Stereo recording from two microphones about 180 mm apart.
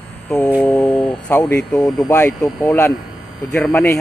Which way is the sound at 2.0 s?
15° left (ahead or behind).